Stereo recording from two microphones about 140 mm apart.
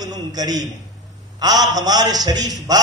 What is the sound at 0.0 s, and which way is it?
A man's voice, 25° right (ahead or behind).